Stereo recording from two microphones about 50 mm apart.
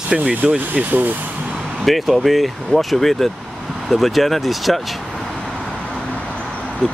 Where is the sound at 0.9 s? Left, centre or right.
Right.